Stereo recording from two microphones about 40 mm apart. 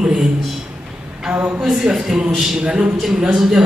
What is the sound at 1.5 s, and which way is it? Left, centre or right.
A woman's voice, centre.